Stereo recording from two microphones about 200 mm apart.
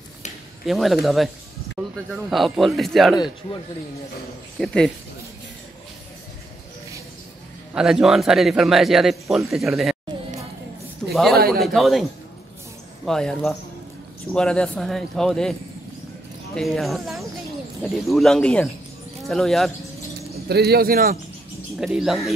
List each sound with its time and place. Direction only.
0.7 s speech: centre (ahead or behind)
1.8 s a sound: 10° right (ahead or behind)
2.1 s speech: centre (ahead or behind)
4.6 s speech: 5° left (ahead or behind)
7.7 s speech: 5° right (ahead or behind)
11.3 s speech: 50° right (ahead or behind)
11.6 s speech: centre (ahead or behind)
16.5 s speech: centre (ahead or behind)
20.4 s speech: 55° right (ahead or behind)
21.7 s speech: centre (ahead or behind)